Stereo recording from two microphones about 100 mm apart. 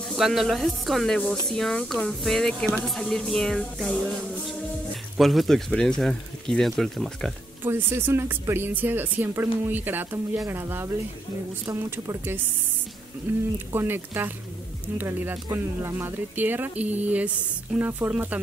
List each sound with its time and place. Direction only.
0.1 s speech: centre (ahead or behind)
7.6 s speech: 20° right (ahead or behind)